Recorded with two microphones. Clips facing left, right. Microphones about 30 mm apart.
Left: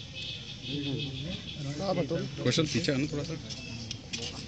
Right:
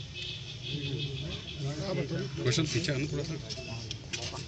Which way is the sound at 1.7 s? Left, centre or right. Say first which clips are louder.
Left 5 dB; left.